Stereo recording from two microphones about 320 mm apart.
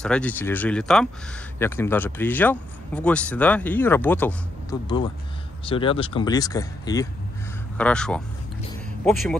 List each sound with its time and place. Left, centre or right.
0.0 s speech: centre